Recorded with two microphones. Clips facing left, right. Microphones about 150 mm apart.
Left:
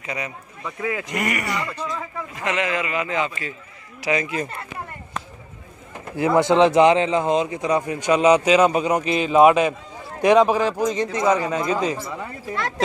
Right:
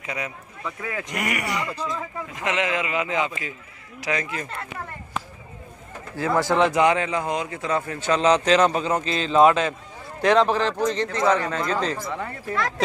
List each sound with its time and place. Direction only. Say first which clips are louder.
0.0 s speech: left 1 dB; centre (ahead or behind)
0.7 s a man's voice: left 4 dB; 15° left (ahead or behind)
1.1 s a man's voice: left 2 dB; 10° right (ahead or behind)
4.0 s a man's voice: left 4 dB; 10° left (ahead or behind)
6.1 s a man's voice: left 4 dB; 20° left (ahead or behind)